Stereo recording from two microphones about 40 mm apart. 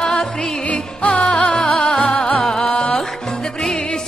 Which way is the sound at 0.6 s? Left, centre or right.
Left.